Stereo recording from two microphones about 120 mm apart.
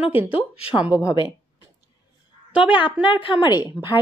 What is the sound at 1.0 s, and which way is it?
Speech, 40° left (ahead or behind).